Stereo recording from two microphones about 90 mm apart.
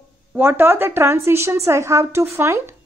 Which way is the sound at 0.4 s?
25° right (ahead or behind).